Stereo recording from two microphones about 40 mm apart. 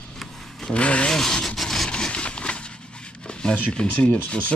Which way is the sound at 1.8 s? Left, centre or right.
Left.